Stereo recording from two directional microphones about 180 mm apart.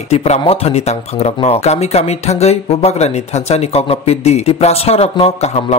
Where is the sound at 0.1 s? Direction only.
35° left (ahead or behind).